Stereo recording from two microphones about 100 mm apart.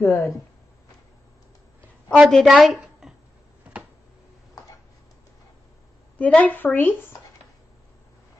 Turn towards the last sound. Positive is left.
turn(degrees=20)  # may be behind; listen again after turning